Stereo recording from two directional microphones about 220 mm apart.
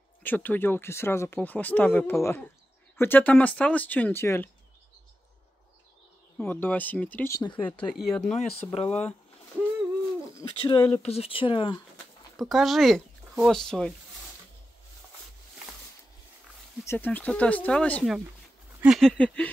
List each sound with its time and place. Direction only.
0.2 s speech: 10° left (ahead or behind)
6.3 s speech: 5° left (ahead or behind)
7.9 s a sound: centre (ahead or behind)
8.3 s speech: 30° left (ahead or behind)
10.4 s speech: 25° left (ahead or behind)
12.4 s speech: centre (ahead or behind)
16.8 s speech: 10° left (ahead or behind)
18.8 s a sound: centre (ahead or behind)